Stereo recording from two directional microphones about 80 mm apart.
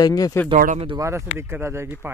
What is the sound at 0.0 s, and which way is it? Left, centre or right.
Speech, left.